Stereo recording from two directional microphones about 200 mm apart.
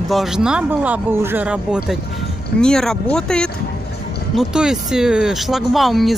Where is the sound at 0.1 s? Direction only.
Centre (ahead or behind).